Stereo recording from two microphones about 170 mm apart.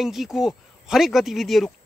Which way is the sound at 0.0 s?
Centre (ahead or behind).